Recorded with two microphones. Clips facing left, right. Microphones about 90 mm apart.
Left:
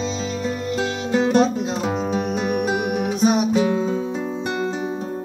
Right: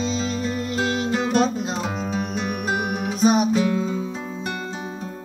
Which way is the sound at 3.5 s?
25° left (ahead or behind).